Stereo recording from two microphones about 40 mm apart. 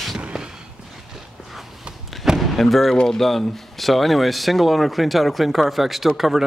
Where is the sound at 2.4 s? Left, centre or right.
Centre.